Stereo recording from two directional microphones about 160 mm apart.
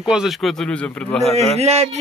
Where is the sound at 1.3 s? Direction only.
40° right (ahead or behind).